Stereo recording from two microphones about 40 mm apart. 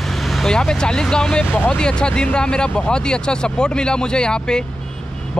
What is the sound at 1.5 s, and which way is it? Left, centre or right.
Speech, left.